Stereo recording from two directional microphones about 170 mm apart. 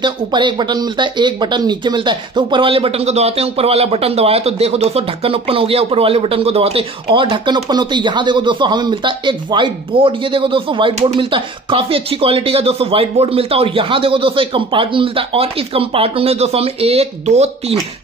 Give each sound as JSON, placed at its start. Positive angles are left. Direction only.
{"t": 0.0, "sound": "speech", "side_deg": -25}